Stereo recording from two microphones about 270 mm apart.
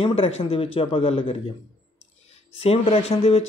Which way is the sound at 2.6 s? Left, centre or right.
Left.